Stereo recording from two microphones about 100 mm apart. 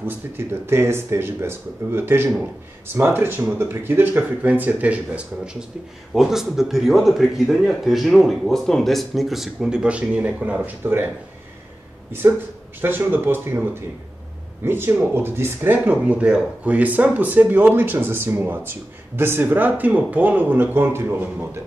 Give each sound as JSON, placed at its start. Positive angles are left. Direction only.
{"t": 0.0, "sound": "a man's voice", "side_deg": -25}
{"t": 12.1, "sound": "speech", "side_deg": -20}